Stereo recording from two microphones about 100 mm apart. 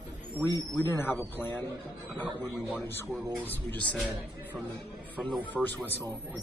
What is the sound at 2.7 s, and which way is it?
Speech, 20° left (ahead or behind).